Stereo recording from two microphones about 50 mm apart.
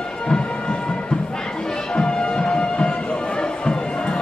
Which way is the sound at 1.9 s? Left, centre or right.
Centre.